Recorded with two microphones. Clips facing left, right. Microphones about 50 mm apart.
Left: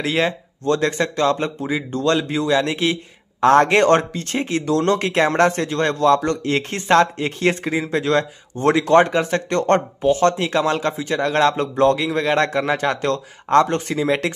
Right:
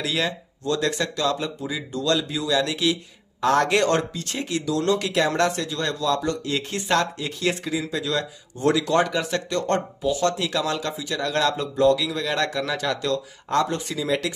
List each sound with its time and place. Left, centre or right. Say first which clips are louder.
0.0 s speech: left 5 dB; left